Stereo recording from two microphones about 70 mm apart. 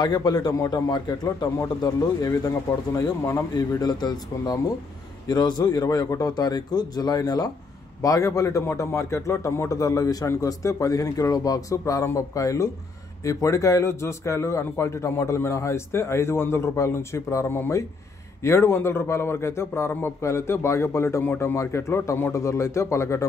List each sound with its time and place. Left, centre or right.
0.0 s a man's voice: left
1.8 s a man's voice: left
3.0 s speech: left
3.8 s a man's voice: left
6.3 s speech: left
8.0 s speech: left
10.2 s speech: left